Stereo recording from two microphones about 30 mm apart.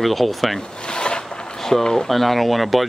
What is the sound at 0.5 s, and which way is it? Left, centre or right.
Zipper, left.